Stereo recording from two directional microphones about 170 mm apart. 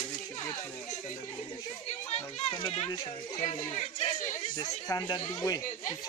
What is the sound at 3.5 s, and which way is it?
Speech, 35° left (ahead or behind).